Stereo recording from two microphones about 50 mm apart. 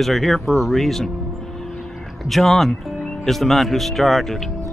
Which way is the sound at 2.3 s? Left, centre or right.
Centre.